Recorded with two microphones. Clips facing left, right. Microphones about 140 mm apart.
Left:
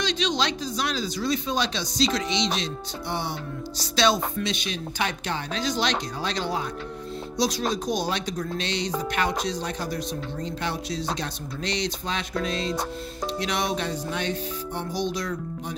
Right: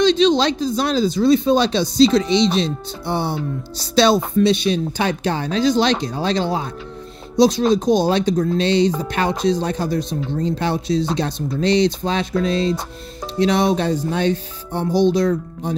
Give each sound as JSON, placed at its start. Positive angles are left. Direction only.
{"t": 0.0, "sound": "speech", "side_deg": -30}